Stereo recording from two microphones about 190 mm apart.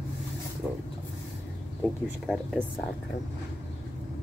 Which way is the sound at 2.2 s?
Centre (ahead or behind).